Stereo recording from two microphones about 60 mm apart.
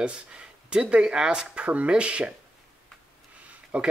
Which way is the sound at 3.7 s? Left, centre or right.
Centre.